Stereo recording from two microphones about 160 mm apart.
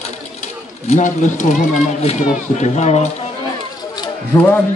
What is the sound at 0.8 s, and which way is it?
Speech, 50° left (ahead or behind).